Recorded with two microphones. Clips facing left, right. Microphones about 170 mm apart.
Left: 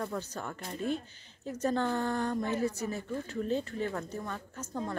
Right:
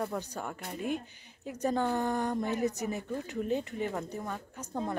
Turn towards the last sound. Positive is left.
turn(degrees=-15)  # may be behind; listen again after turning